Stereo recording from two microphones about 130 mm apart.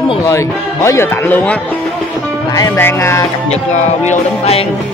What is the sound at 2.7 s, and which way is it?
Speech, 20° left (ahead or behind).